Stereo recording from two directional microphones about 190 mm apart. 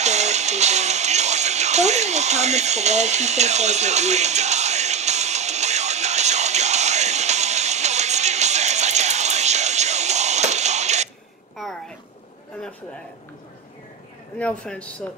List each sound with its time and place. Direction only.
0.0 s music: 35° right (ahead or behind)
11.6 s a sound: centre (ahead or behind)
14.4 s speech: 5° left (ahead or behind)